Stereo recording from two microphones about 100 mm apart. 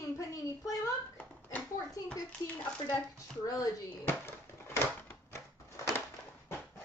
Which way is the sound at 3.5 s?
30° left (ahead or behind).